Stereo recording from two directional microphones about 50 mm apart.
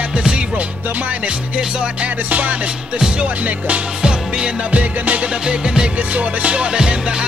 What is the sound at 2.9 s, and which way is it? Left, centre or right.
Music, centre.